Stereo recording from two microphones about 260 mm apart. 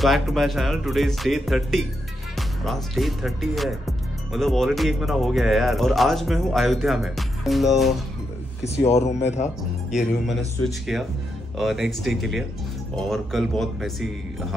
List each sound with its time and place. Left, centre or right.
0.0 s speech: centre
8.8 s speech: left
9.8 s speech: centre